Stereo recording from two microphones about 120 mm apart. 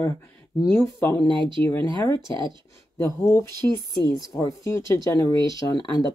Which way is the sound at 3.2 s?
20° left (ahead or behind).